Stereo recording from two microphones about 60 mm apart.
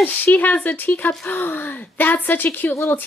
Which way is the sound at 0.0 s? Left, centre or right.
Left.